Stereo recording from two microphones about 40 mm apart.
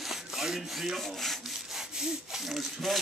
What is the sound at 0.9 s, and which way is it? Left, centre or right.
Speech, centre.